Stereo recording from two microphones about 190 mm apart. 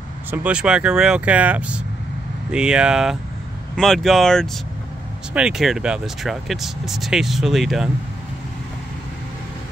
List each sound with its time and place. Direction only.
0.3 s speech: 5° right (ahead or behind)